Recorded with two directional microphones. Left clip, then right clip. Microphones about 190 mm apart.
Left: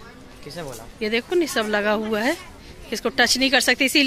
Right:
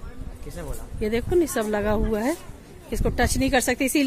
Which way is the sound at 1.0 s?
20° right (ahead or behind).